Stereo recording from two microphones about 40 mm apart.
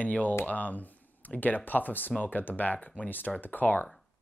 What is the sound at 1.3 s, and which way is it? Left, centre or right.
Speech, left.